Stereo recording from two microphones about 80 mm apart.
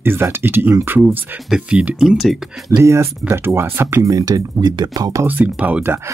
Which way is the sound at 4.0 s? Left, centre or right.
Right.